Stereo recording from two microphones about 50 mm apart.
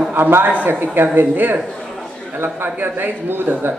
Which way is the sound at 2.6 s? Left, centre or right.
Right.